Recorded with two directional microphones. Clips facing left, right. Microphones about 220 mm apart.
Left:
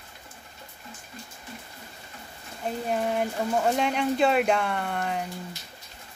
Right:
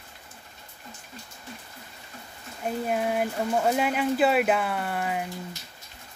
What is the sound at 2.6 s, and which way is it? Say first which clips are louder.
Speech: right 1 dB; 5° right (ahead or behind).